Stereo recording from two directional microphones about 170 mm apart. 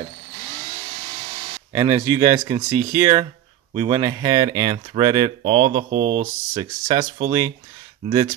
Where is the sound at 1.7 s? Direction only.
20° right (ahead or behind).